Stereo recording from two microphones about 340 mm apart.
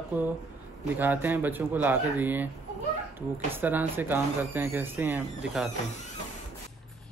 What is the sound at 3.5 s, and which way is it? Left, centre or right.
Speech, centre.